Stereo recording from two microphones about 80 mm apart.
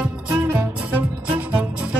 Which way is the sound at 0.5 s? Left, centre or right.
Right.